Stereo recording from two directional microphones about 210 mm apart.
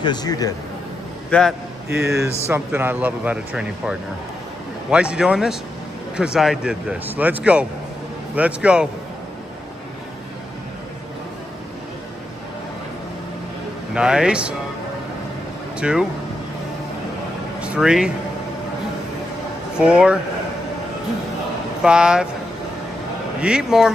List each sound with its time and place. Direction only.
0.0 s a man's voice: 20° left (ahead or behind)
1.3 s a man's voice: 10° left (ahead or behind)
2.1 s speech: 10° right (ahead or behind)
4.9 s speech: 5° right (ahead or behind)
13.9 s speech: 5° right (ahead or behind)
15.8 s speech: 5° right (ahead or behind)
17.6 s speech: 5° right (ahead or behind)
19.8 s speech: 5° right (ahead or behind)
21.8 s speech: 5° right (ahead or behind)
23.4 s speech: 5° right (ahead or behind)